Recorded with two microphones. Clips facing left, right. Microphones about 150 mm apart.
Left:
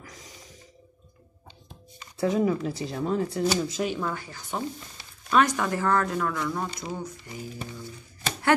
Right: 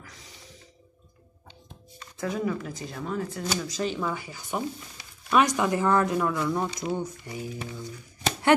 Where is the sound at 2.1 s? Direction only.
40° left (ahead or behind).